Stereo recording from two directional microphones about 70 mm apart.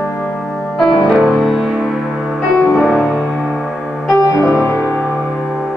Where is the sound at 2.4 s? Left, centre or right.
Centre.